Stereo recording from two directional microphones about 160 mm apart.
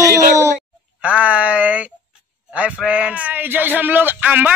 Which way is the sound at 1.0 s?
10° right (ahead or behind).